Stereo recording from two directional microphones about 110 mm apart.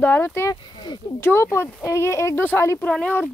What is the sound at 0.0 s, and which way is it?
Speech, 20° left (ahead or behind).